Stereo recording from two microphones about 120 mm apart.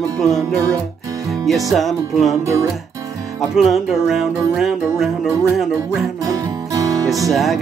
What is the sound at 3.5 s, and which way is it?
Music, 5° right (ahead or behind).